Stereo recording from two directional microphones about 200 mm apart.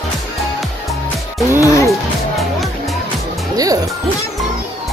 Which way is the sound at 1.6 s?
15° left (ahead or behind).